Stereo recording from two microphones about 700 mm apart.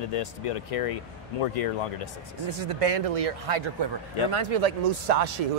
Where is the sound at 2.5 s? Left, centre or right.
Right.